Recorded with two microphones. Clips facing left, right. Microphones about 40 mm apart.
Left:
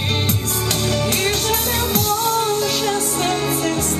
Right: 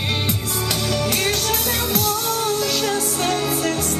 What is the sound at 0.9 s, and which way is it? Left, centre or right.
Music, left.